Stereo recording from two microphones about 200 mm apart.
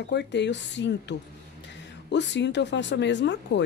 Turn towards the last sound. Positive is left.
turn(degrees=60)  # may be behind; listen again after turning